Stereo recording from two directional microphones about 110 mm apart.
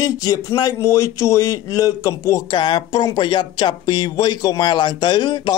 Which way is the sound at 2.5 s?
45° left (ahead or behind).